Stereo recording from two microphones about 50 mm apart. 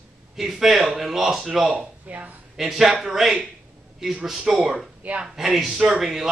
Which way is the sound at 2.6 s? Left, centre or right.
Centre.